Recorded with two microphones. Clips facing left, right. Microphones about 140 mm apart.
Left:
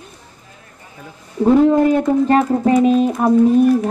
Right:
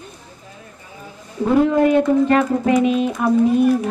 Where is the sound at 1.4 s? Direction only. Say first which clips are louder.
Left 3 dB; 35° left (ahead or behind).